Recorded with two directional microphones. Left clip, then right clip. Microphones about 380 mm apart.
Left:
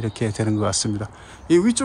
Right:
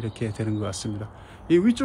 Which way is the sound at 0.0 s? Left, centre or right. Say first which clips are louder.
Left 6 dB; centre.